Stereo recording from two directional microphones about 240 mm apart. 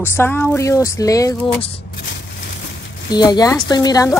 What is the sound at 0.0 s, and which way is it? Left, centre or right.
Speech, centre.